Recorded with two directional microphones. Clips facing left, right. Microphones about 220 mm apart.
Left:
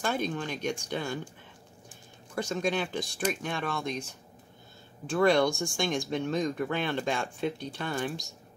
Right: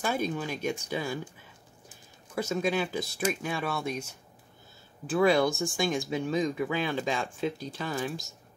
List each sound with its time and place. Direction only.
0.0 s speech: 5° right (ahead or behind)
2.3 s speech: 5° right (ahead or behind)